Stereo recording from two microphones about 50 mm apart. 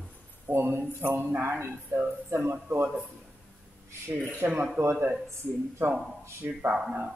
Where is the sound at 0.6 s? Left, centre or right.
Right.